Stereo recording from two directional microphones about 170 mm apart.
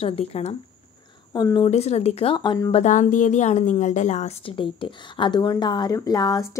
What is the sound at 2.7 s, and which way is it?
A woman's voice, 45° left (ahead or behind).